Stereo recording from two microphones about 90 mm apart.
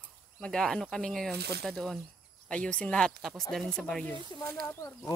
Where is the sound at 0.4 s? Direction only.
5° left (ahead or behind).